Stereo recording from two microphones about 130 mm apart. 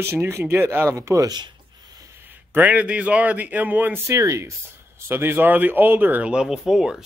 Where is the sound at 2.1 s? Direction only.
15° right (ahead or behind).